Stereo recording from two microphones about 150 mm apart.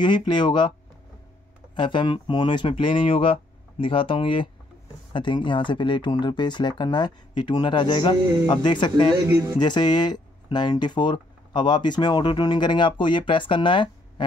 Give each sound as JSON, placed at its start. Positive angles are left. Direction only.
{"t": 0.3, "sound": "speech", "side_deg": 30}
{"t": 1.8, "sound": "speech", "side_deg": 30}